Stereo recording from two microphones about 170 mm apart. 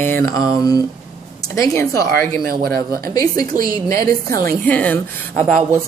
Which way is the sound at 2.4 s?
60° right (ahead or behind).